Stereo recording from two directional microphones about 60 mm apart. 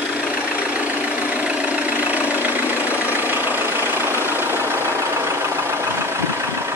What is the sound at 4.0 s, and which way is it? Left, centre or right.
Vehicle, right.